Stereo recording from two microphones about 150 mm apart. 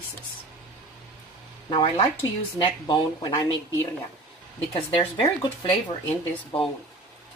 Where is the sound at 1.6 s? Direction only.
35° left (ahead or behind).